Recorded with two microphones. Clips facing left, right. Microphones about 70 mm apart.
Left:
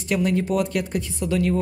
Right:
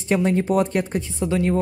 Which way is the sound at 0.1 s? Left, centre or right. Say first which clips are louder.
Right 3 dB; right.